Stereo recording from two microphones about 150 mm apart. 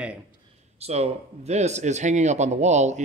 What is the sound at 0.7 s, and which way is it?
Speech, 45° right (ahead or behind).